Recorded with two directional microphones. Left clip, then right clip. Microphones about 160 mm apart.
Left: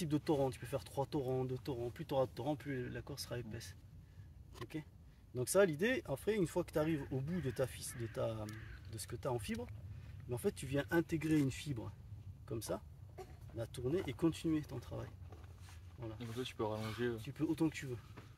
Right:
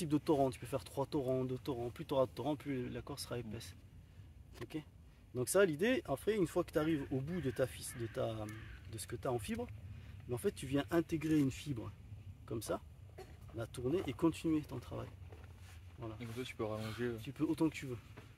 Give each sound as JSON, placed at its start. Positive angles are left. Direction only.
{"t": 0.0, "sound": "speech", "side_deg": -30}
{"t": 5.3, "sound": "speech", "side_deg": -25}
{"t": 12.4, "sound": "speech", "side_deg": -25}
{"t": 16.2, "sound": "speech", "side_deg": 5}
{"t": 17.2, "sound": "speech", "side_deg": -30}